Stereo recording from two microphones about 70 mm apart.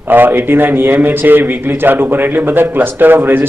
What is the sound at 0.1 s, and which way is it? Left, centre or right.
A man's voice, right.